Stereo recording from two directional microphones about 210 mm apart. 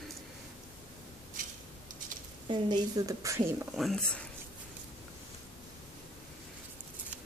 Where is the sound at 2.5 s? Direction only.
20° right (ahead or behind).